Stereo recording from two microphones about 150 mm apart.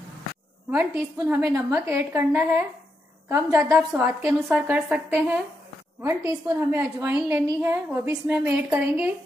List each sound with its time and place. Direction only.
0.7 s a woman's voice: 10° right (ahead or behind)
1.1 s a woman's voice: 20° right (ahead or behind)